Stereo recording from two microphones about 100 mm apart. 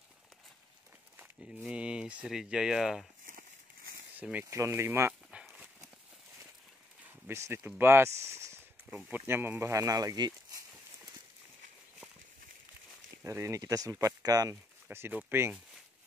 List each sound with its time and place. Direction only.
1.7 s speech: 10° right (ahead or behind)
4.2 s speech: 15° right (ahead or behind)
4.5 s speech: 30° right (ahead or behind)
5.3 s horse: 10° right (ahead or behind)
7.1 s speech: 25° right (ahead or behind)
8.3 s a sound: 30° right (ahead or behind)
9.3 s speech: 20° right (ahead or behind); by 10.6 s 40° right (ahead or behind)
13.2 s speech: 30° right (ahead or behind)
14.9 s speech: 20° right (ahead or behind)